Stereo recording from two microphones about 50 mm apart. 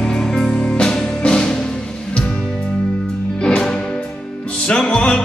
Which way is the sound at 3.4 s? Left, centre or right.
Centre.